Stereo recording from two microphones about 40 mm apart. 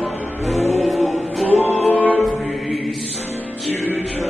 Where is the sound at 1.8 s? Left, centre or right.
Left.